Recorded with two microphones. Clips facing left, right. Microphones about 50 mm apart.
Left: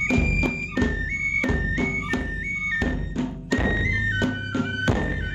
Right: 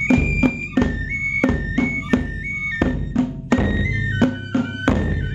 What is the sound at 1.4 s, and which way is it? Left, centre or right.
Music, right.